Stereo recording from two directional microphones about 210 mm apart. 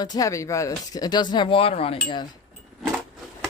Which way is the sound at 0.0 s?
15° left (ahead or behind).